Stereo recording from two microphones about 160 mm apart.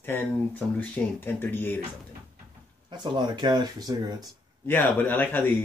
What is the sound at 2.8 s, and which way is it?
Speech, 30° right (ahead or behind).